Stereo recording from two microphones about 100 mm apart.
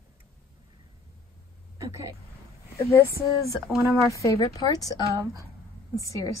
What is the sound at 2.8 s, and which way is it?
A woman's voice, 30° left (ahead or behind).